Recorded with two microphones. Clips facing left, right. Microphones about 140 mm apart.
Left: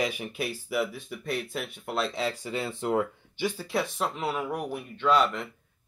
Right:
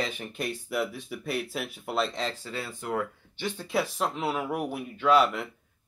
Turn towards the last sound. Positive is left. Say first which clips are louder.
# right 2 dB
turn(degrees=-5)  # may be behind; listen again after turning